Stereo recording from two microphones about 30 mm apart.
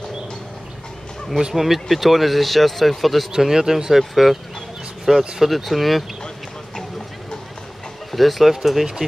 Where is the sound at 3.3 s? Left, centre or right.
Centre.